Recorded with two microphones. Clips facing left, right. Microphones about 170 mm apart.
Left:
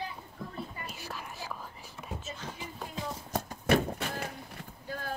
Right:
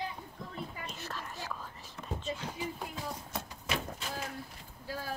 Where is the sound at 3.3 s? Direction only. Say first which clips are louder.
Left 14 dB; 50° left (ahead or behind).